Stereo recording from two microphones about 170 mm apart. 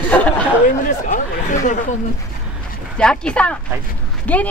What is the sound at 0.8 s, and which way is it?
Speech, 50° left (ahead or behind).